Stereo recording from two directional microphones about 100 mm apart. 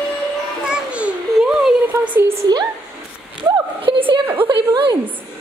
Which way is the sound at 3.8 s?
60° right (ahead or behind).